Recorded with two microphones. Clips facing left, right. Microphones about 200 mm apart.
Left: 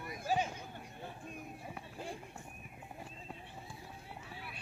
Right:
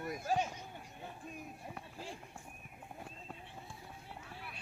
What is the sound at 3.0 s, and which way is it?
Horse, centre (ahead or behind).